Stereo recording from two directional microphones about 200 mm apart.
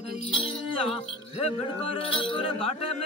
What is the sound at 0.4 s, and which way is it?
Music, 25° left (ahead or behind).